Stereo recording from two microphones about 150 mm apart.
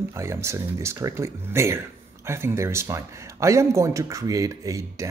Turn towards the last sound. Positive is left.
turn(degrees=-20)  # may be behind; listen again after turning